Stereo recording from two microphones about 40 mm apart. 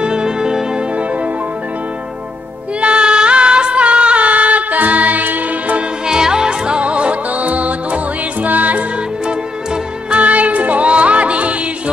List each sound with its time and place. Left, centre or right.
0.0 s music: centre
2.8 s music: right
6.0 s music: centre; by 8.8 s right
10.1 s music: right